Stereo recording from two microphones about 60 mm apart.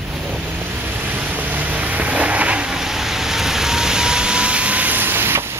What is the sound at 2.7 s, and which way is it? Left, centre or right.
Vehicle, centre.